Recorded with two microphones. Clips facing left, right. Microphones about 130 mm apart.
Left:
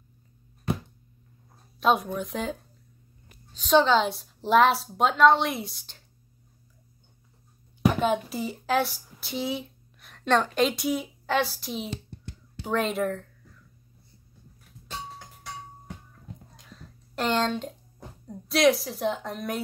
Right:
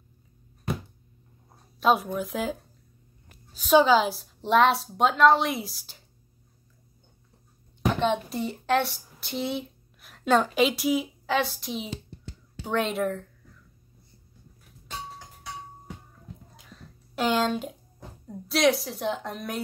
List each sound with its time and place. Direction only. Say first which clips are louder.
1.8 s a woman's voice: right 1 dB; centre (ahead or behind)
3.5 s a woman's voice: right 1 dB; 5° right (ahead or behind)
7.8 s a woman's voice: left 1 dB; 5° left (ahead or behind)
16.5 s a sound: even; centre (ahead or behind)
18.2 s a woman's voice: left 1 dB; centre (ahead or behind)